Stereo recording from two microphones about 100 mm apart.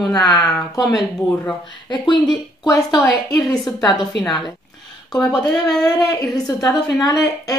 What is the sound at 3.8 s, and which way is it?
Speech, centre (ahead or behind).